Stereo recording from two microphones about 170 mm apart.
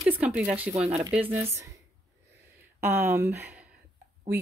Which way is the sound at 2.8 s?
10° right (ahead or behind).